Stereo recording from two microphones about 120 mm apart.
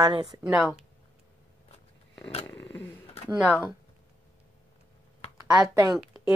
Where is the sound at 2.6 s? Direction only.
15° left (ahead or behind).